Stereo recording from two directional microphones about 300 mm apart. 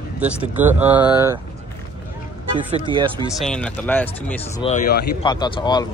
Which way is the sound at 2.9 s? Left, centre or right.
Centre.